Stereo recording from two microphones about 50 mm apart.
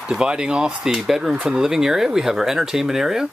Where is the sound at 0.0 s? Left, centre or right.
Centre.